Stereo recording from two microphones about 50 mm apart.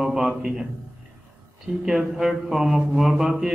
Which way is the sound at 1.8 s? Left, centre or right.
Centre.